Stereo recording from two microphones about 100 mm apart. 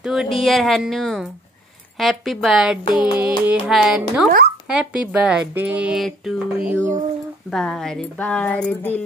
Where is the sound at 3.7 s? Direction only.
5° right (ahead or behind).